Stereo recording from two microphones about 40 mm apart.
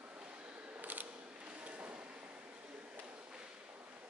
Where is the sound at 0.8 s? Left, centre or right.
Right.